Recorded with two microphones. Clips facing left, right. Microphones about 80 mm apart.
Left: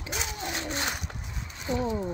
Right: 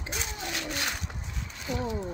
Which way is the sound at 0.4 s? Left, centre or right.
Left.